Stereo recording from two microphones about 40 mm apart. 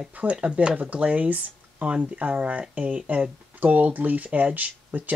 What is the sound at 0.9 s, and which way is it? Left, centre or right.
Speech, right.